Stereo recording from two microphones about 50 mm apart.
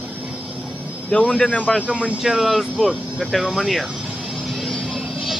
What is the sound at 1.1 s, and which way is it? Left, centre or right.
Speech, left.